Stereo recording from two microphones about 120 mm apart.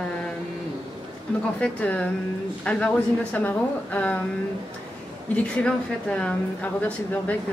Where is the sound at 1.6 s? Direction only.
10° left (ahead or behind).